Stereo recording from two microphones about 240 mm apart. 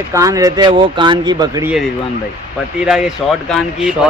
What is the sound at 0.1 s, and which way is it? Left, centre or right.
Speech, centre.